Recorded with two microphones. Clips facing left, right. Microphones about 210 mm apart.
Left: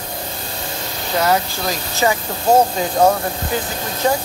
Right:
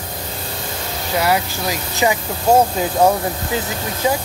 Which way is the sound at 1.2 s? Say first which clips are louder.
Left 2 dB; 10° right (ahead or behind).